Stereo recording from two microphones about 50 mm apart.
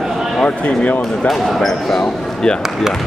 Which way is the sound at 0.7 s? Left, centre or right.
Left.